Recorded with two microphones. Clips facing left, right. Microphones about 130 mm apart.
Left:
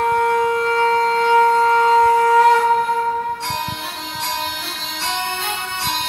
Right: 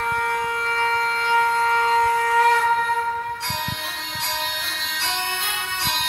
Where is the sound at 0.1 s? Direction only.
40° left (ahead or behind).